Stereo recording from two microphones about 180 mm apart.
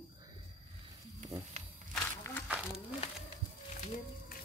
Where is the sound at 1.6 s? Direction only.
40° right (ahead or behind).